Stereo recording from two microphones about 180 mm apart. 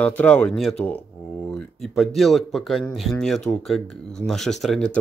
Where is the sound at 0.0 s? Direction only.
5° left (ahead or behind).